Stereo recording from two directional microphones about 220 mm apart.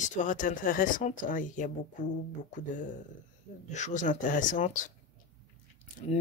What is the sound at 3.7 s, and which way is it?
Speech, 35° left (ahead or behind).